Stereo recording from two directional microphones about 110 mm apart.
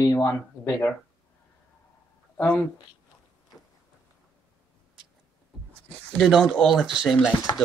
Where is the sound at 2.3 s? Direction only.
15° left (ahead or behind).